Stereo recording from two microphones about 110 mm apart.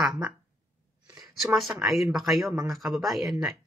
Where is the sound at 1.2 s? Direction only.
Centre (ahead or behind).